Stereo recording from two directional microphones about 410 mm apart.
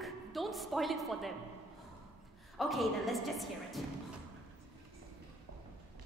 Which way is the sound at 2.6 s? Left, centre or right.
Centre.